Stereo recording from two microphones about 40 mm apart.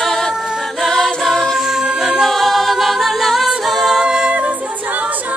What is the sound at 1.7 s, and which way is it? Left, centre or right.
A capella, centre.